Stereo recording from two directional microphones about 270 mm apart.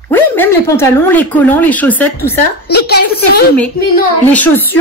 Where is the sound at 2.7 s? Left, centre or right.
Left.